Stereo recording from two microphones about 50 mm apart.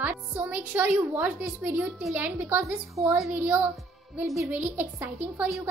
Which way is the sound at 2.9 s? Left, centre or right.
Right.